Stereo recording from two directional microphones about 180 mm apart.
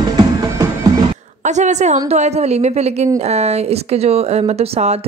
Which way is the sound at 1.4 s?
40° right (ahead or behind).